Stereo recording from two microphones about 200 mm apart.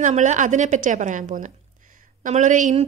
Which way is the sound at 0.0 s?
35° right (ahead or behind).